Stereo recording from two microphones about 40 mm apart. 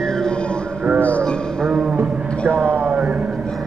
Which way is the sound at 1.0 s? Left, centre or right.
Left.